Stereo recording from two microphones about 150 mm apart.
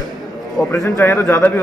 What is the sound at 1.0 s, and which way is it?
Speech, 15° left (ahead or behind).